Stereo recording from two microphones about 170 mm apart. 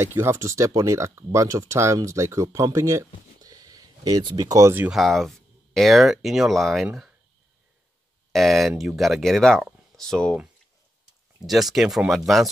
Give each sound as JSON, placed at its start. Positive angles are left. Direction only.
{"t": 0.0, "sound": "speech", "side_deg": -15}
{"t": 4.9, "sound": "speech", "side_deg": 0}
{"t": 8.3, "sound": "speech", "side_deg": 0}
{"t": 11.4, "sound": "speech", "side_deg": 0}